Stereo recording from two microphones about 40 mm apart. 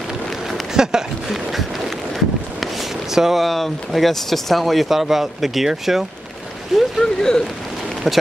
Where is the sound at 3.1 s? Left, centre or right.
Centre.